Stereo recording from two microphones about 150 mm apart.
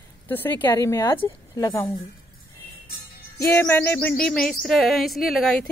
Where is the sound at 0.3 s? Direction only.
15° left (ahead or behind).